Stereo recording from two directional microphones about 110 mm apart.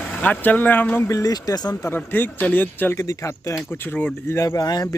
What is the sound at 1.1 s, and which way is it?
Speech, 30° left (ahead or behind).